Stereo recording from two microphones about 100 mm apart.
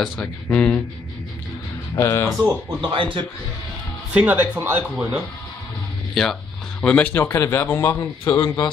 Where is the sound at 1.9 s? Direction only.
30° left (ahead or behind).